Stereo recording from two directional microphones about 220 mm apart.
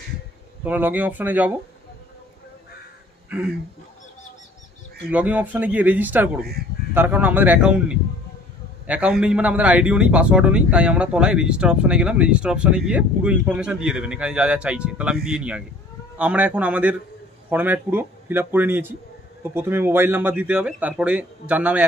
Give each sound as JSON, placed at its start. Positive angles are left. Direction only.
{"t": 0.7, "sound": "speech", "side_deg": -10}
{"t": 5.1, "sound": "speech", "side_deg": -5}
{"t": 6.4, "sound": "speech", "side_deg": -45}
{"t": 6.9, "sound": "a man's voice", "side_deg": -10}